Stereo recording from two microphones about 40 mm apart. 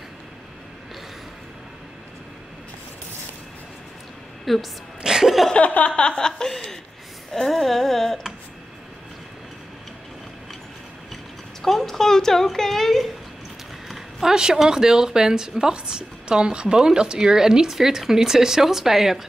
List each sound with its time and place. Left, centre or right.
4.5 s humming: centre
5.0 s music: centre
5.6 s a sound: left
5.9 s a sound: left
6.5 s speech: centre
7.3 s humming: centre
11.6 s a woman's voice: centre
13.8 s a sound: centre
14.3 s speech: centre